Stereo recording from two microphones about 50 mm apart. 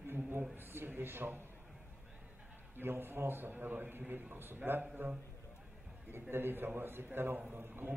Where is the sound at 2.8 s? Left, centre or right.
Right.